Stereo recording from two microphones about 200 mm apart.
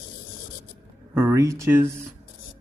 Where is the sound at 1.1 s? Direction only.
15° right (ahead or behind).